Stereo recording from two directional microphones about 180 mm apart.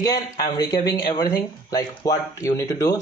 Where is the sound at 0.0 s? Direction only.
20° left (ahead or behind).